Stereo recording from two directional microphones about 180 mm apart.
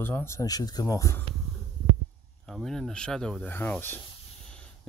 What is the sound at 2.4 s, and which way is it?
Speech, centre (ahead or behind).